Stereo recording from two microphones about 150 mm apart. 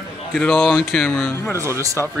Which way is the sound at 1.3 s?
15° left (ahead or behind).